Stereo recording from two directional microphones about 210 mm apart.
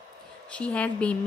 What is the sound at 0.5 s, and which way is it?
Speech, 5° left (ahead or behind).